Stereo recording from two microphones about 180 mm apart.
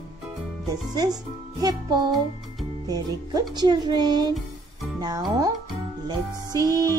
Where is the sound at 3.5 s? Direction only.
20° right (ahead or behind).